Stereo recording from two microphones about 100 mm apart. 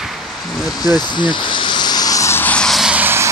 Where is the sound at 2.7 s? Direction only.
5° right (ahead or behind).